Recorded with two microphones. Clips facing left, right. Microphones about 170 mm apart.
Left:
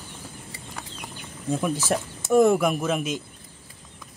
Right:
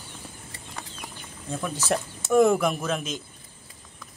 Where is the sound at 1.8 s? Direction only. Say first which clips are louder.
Left 1 dB; centre (ahead or behind).